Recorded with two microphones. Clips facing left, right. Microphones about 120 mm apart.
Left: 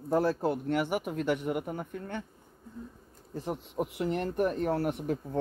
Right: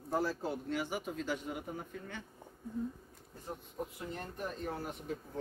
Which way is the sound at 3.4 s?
85° left.